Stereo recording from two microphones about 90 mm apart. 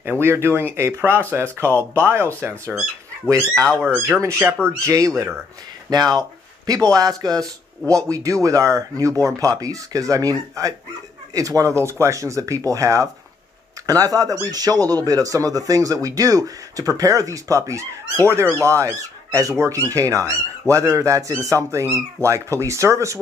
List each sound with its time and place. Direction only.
0.0 s a man's voice: 25° right (ahead or behind)
6.6 s a man's voice: 40° right (ahead or behind)
7.8 s speech: 15° left (ahead or behind)
8.1 s a man's voice: 40° right (ahead or behind)